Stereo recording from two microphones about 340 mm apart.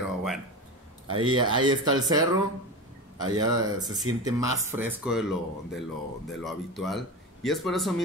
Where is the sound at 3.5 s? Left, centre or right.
Right.